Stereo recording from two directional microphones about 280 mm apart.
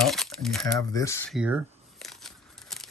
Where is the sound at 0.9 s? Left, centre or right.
Centre.